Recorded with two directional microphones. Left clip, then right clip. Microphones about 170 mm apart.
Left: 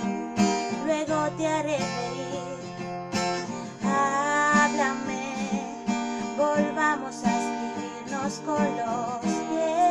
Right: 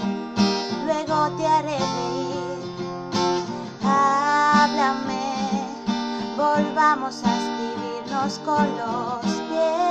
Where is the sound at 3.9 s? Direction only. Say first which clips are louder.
Right 5 dB; 5° right (ahead or behind).